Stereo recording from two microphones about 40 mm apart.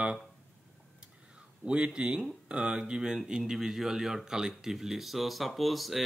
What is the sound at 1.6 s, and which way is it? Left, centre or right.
Speech, right.